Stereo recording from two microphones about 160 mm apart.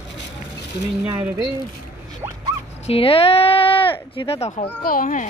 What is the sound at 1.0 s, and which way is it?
Speech, 10° right (ahead or behind).